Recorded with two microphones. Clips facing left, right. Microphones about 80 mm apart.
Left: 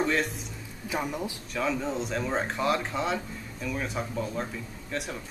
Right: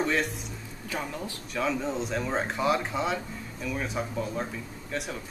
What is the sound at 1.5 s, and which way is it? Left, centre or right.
Speech, centre.